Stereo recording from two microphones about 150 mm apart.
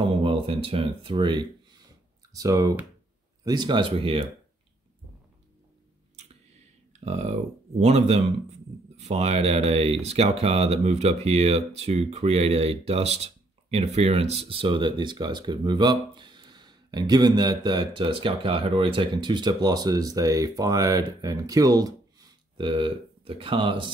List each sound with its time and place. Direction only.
0.2 s a man's voice: 40° right (ahead or behind)
6.9 s a man's voice: 45° right (ahead or behind)